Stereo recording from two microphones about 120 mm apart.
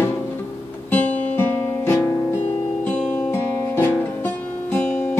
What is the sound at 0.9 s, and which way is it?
Guitar, 10° left (ahead or behind).